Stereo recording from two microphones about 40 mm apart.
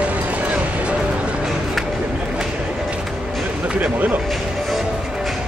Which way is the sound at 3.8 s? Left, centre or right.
Right.